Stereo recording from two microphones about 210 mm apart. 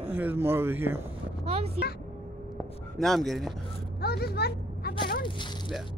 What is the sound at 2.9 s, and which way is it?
Speech, centre (ahead or behind).